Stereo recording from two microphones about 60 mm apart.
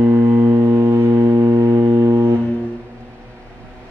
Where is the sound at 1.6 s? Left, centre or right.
Right.